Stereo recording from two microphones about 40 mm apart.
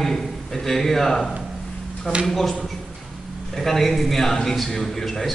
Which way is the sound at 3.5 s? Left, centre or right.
Centre.